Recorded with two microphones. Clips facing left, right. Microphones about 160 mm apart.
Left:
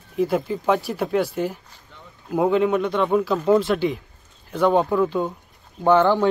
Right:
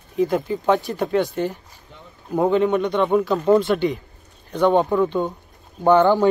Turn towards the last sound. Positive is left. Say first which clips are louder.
# right 2 dB
turn(degrees=0)  # may be behind; listen again after turning